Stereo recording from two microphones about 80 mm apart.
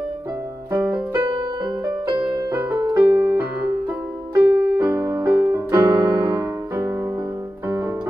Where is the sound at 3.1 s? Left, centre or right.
Right.